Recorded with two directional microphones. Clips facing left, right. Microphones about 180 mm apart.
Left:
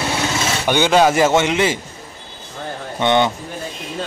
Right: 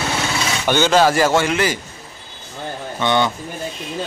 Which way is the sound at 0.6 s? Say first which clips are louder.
Even; 15° left (ahead or behind).